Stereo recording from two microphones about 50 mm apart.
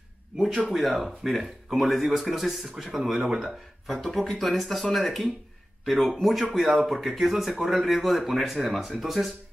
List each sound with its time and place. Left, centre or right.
0.6 s speech: centre